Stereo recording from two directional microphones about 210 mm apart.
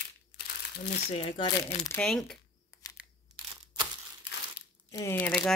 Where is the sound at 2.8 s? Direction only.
15° left (ahead or behind).